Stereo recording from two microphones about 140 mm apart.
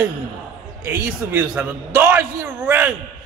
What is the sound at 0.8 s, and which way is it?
A man's voice, 10° right (ahead or behind).